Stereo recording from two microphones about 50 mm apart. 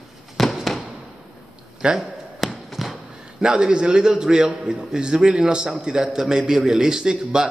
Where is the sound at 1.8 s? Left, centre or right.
Centre.